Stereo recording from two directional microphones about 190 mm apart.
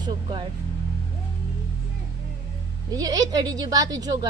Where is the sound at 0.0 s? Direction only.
25° right (ahead or behind).